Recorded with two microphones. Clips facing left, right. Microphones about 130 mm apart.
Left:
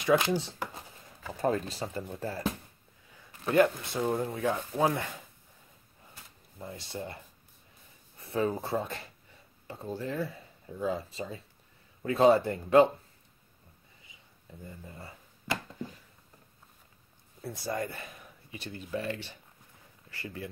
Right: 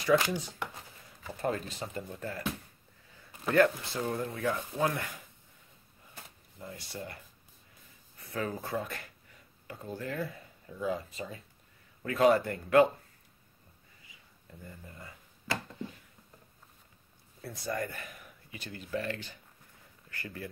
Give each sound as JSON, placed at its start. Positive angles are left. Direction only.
{"t": 0.3, "sound": "speech", "side_deg": 35}
{"t": 3.4, "sound": "speech", "side_deg": 20}
{"t": 6.6, "sound": "speech", "side_deg": 25}
{"t": 8.2, "sound": "speech", "side_deg": 25}
{"t": 14.6, "sound": "a sound", "side_deg": 25}
{"t": 17.6, "sound": "speech", "side_deg": 25}